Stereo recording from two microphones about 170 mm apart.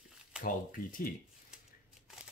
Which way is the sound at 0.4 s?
55° left (ahead or behind).